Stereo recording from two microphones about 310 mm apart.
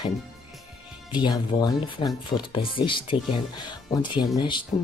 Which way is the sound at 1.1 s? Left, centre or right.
Centre.